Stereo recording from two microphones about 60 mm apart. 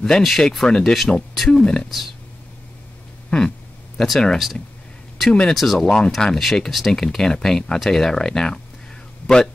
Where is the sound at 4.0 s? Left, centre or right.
Centre.